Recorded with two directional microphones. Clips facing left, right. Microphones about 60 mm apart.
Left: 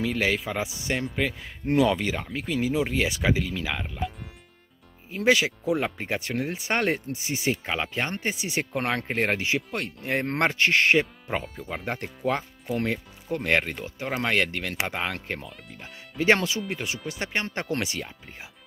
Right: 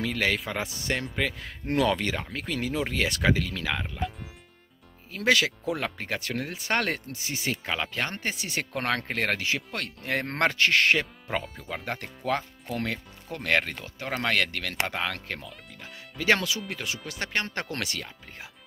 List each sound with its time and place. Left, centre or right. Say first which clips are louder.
0.0 s speech: left 2 dB; centre
5.1 s speech: left 2 dB; centre
11.2 s speech: left 1 dB; centre
11.8 s speech: left 6 dB; left